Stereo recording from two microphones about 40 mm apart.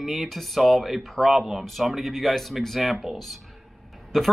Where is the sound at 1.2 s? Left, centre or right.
Centre.